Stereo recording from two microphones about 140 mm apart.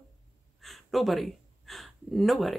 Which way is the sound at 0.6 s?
Centre (ahead or behind).